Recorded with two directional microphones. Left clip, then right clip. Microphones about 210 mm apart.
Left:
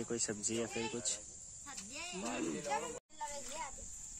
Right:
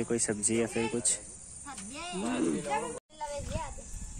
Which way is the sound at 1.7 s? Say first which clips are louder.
Right 6 dB; 5° left (ahead or behind).